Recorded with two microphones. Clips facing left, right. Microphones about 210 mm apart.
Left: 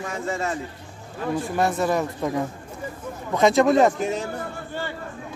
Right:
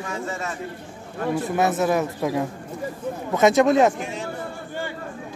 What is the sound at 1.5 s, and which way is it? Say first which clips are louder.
Speech: right 1 dB; 5° right (ahead or behind).